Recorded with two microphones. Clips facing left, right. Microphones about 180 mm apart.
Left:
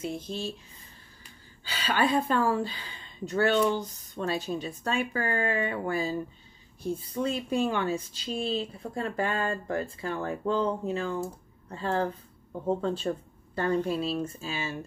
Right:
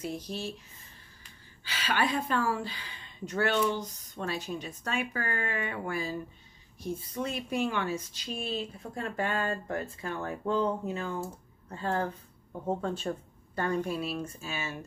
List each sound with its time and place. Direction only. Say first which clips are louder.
0.0 s a woman's voice: left 2 dB; 25° left (ahead or behind)
1.7 s a woman's voice: left 4 dB; 30° left (ahead or behind)